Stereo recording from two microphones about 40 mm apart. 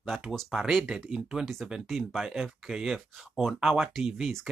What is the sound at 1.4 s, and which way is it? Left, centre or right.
Speech, centre.